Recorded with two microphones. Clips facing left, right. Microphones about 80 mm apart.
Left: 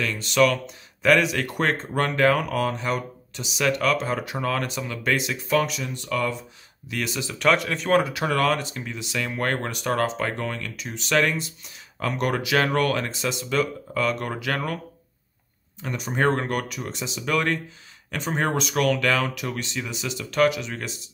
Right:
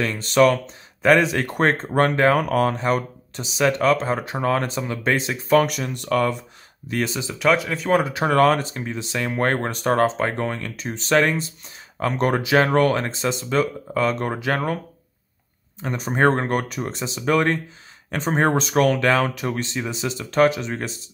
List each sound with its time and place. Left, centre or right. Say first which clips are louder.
0.0 s speech: right 4 dB; right
2.3 s speech: right 5 dB; right
5.6 s speech: right 5 dB; right
6.9 s speech: right 5 dB; right
7.3 s speech: right 2 dB; centre
8.0 s speech: right 5 dB; right
15.8 s speech: right 4 dB; right